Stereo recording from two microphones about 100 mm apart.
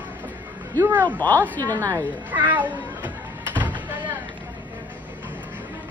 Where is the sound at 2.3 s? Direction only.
15° right (ahead or behind).